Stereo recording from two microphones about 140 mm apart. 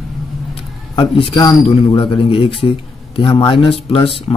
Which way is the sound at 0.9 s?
40° left (ahead or behind).